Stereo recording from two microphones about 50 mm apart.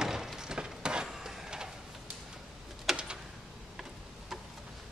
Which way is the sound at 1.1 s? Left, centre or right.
Centre.